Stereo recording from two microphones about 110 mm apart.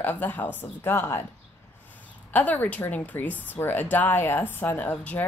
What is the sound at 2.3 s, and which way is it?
A woman's voice, 15° left (ahead or behind).